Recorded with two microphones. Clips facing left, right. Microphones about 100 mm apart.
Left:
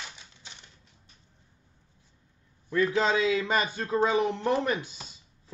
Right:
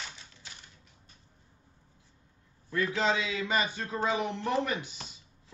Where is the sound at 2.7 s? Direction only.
35° left (ahead or behind).